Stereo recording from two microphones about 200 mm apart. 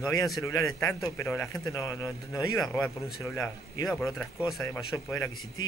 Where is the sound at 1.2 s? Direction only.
15° left (ahead or behind).